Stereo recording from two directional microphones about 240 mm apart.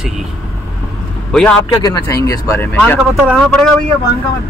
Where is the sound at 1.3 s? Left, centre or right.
Centre.